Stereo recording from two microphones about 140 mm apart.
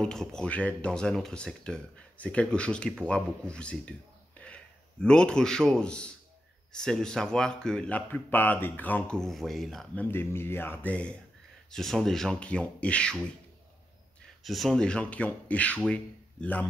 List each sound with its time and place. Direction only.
0.0 s speech: 5° left (ahead or behind)
5.0 s speech: 5° left (ahead or behind)
10.0 s speech: 15° left (ahead or behind)
14.4 s speech: centre (ahead or behind)